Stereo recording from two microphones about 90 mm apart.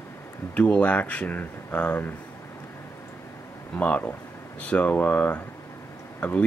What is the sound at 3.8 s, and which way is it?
Speech, 15° left (ahead or behind).